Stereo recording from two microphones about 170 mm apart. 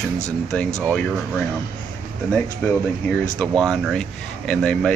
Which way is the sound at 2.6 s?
10° left (ahead or behind).